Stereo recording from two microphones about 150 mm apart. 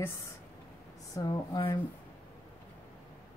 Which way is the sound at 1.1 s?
25° left (ahead or behind).